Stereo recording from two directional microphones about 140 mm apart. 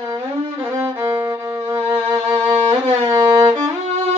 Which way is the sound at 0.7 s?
20° right (ahead or behind).